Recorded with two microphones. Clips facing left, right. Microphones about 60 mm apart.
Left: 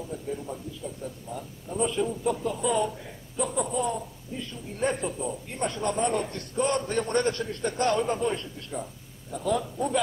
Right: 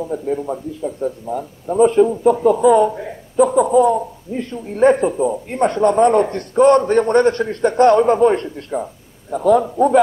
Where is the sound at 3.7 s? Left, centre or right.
Right.